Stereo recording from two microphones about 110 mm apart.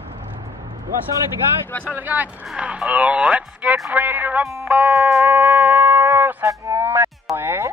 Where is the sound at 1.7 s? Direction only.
15° left (ahead or behind).